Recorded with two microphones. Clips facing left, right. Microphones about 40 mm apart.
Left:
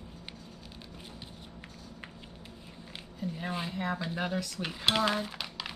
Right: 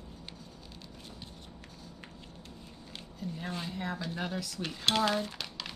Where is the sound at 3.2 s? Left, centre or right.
Centre.